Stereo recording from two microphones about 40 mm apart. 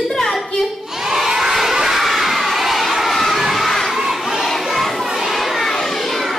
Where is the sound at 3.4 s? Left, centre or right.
Centre.